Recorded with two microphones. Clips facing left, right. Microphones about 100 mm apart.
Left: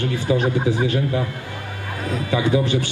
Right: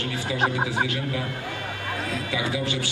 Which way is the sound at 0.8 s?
35° left (ahead or behind).